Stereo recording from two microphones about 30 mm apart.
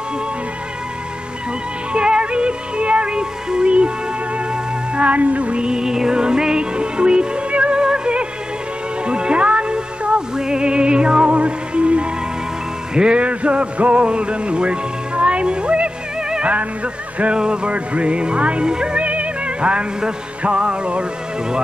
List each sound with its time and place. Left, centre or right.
1.9 s music: right
3.6 s music: right
4.9 s music: right
5.6 s music: right
10.3 s music: right
11.2 s music: right
13.2 s music: right
16.4 s music: right
18.9 s music: right